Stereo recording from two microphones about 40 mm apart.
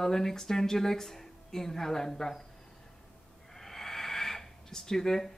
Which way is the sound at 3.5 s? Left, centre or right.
Centre.